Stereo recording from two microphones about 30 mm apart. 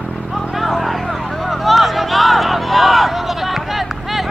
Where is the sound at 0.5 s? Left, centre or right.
Centre.